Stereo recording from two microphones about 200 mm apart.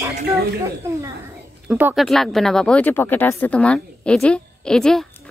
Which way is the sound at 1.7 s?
5° right (ahead or behind).